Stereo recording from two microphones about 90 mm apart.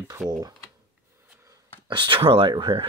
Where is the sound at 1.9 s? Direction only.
65° right (ahead or behind); by 2.5 s 80° right.